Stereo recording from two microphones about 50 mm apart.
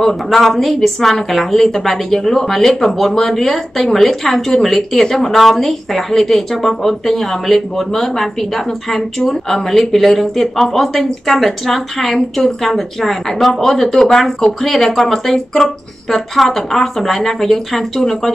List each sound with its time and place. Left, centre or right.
0.0 s a woman's voice: centre